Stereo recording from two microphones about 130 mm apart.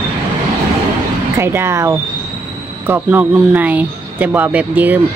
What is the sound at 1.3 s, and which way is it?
Speech, 20° right (ahead or behind).